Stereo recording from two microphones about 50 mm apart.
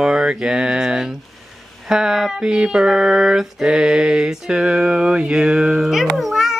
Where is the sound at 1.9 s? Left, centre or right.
Centre.